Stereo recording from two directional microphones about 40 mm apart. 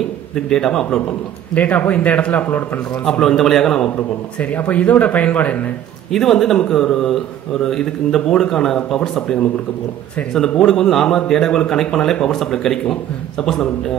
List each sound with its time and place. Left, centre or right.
0.5 s speech: centre
1.5 s speech: left
3.1 s speech: centre
4.4 s speech: left
6.1 s speech: centre
10.6 s speech: centre